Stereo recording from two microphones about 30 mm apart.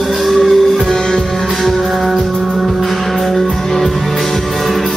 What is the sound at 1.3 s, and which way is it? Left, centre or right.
Music, centre.